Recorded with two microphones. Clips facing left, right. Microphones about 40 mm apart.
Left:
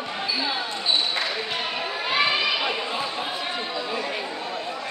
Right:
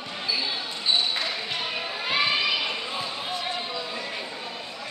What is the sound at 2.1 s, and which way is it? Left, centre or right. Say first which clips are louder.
Children playing: left 2 dB; centre.